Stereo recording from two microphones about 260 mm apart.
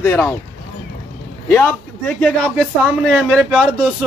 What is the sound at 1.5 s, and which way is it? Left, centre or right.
A man's voice, centre.